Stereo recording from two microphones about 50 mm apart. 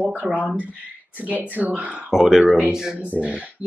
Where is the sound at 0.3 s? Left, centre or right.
Right.